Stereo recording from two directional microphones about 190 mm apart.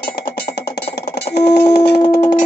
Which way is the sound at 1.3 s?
60° left (ahead or behind).